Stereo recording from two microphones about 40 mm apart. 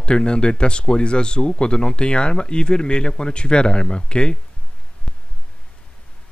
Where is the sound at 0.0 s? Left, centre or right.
Left.